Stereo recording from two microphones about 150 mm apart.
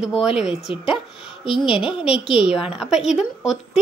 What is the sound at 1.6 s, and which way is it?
Speech, 35° left (ahead or behind).